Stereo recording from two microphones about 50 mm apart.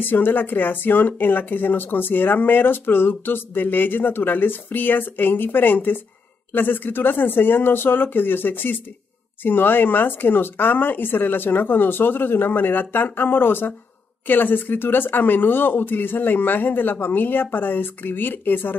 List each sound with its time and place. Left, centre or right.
0.0 s speech: left